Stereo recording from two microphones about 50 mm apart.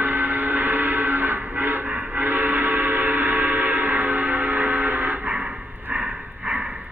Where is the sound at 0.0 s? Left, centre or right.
Right.